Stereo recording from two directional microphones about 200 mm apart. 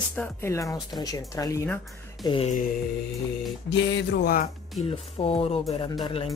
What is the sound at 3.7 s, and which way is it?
Speech, 60° left (ahead or behind).